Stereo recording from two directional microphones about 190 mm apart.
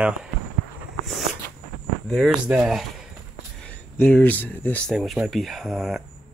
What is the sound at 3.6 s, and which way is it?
Speech, 10° left (ahead or behind).